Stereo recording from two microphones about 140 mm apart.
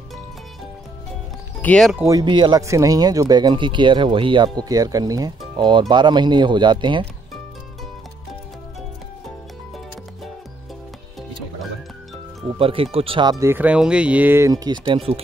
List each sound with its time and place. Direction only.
1.6 s speech: 10° left (ahead or behind)
2.0 s speech: 30° right (ahead or behind)
2.6 s speech: 25° right (ahead or behind)
12.5 s speech: 40° right (ahead or behind)
13.5 s speech: 10° right (ahead or behind); by 15.2 s 45° right (ahead or behind)